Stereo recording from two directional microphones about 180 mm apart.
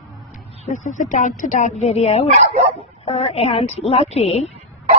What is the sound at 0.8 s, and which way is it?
Speech, 40° left (ahead or behind).